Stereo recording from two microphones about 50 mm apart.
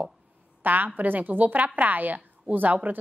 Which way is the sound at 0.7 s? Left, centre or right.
Right.